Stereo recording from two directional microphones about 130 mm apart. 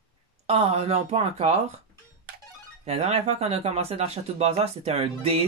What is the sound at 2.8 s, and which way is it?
Speech, 55° right (ahead or behind).